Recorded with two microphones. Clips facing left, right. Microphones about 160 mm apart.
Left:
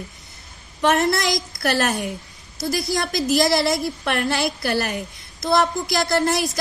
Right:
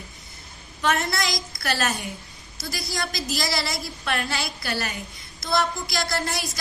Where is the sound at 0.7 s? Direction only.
50° left (ahead or behind).